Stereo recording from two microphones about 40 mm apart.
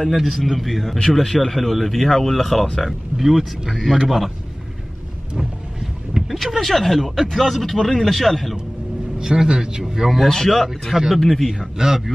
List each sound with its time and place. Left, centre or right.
0.0 s speech: centre
3.2 s speech: centre
5.4 s boat: centre
6.2 s vehicle: centre
6.6 s speech: centre
9.2 s a man's voice: centre
10.1 s speech: centre
11.8 s a man's voice: centre